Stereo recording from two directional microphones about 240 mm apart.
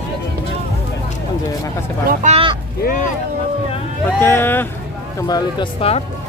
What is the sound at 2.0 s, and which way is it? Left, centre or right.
Speech, right.